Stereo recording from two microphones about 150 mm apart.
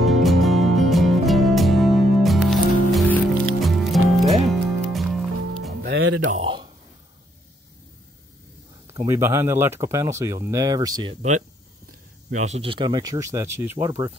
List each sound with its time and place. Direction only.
0.0 s music: centre (ahead or behind)
5.9 s music: 90° right
6.3 s a sound: 35° right (ahead or behind)
8.8 s speech: 20° right (ahead or behind)
12.3 s speech: 50° right (ahead or behind)
12.6 s speech: 30° right (ahead or behind)